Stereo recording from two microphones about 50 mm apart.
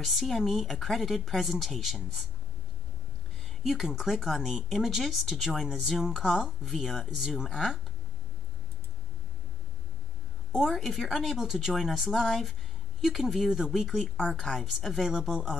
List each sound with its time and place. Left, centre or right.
0.0 s speech: centre
3.4 s speech: centre
7.4 s speech: centre
10.5 s speech: centre
15.1 s speech: centre